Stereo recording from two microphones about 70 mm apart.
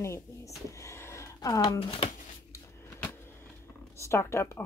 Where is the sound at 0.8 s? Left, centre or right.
Left.